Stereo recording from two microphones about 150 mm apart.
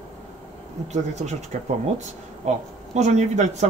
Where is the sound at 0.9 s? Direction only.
50° right (ahead or behind).